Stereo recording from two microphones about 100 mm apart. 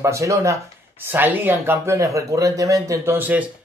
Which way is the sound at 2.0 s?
30° right (ahead or behind).